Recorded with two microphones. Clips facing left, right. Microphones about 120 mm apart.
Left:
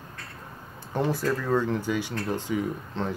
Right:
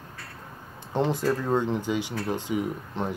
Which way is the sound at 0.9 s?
20° right (ahead or behind).